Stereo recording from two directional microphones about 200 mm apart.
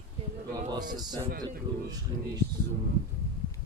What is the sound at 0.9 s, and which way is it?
Speech, 20° right (ahead or behind).